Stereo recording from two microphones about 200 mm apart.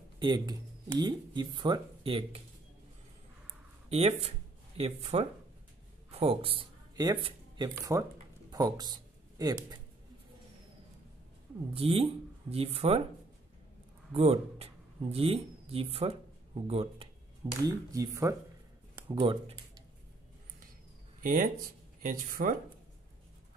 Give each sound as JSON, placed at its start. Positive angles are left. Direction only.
{"t": 0.2, "sound": "speech", "side_deg": -20}
{"t": 3.9, "sound": "speech", "side_deg": -30}
{"t": 11.7, "sound": "speech", "side_deg": -30}
{"t": 14.1, "sound": "speech", "side_deg": -30}
{"t": 17.6, "sound": "speech", "side_deg": -15}
{"t": 21.2, "sound": "speech", "side_deg": -45}